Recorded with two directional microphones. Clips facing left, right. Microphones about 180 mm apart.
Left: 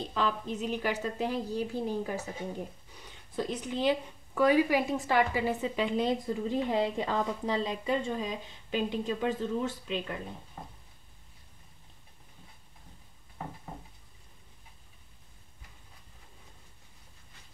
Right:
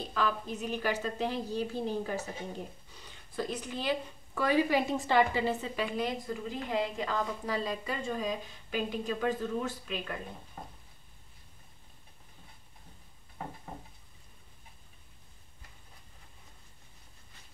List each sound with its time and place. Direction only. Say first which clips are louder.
0.0 s a woman's voice: left 1 dB; 20° left (ahead or behind)
3.3 s a woman's voice: left 3 dB; 20° left (ahead or behind)